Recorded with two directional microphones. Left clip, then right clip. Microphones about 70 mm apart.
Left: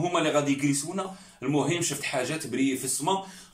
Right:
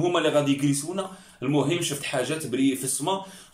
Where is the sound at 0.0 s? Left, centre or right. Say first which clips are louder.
Right 3 dB; right.